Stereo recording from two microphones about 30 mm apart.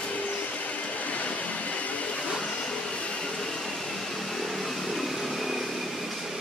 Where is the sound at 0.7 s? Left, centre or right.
Left.